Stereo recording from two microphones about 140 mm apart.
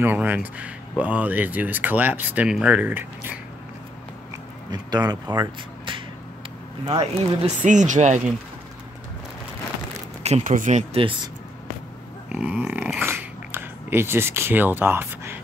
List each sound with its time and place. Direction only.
0.0 s speech: 15° right (ahead or behind)
4.6 s speech: 30° right (ahead or behind)
7.6 s speech: 60° right (ahead or behind)
10.4 s speech: 65° right (ahead or behind)
12.3 s speech: 10° right (ahead or behind)